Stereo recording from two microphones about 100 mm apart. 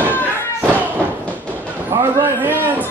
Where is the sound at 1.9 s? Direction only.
25° right (ahead or behind).